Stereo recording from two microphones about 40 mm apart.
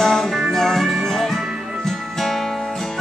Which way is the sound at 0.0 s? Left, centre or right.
Centre.